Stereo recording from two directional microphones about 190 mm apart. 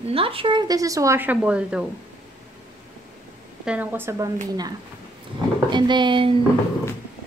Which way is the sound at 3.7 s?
10° right (ahead or behind).